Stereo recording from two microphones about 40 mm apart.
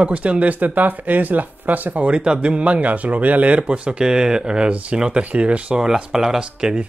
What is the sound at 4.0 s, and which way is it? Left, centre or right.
Speech, centre.